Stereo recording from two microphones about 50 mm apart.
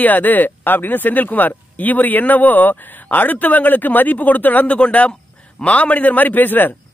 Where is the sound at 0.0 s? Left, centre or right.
Left.